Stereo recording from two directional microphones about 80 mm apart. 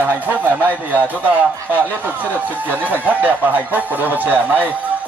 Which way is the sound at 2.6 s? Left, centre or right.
Right.